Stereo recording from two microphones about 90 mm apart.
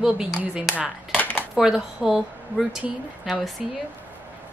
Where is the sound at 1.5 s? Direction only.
5° right (ahead or behind).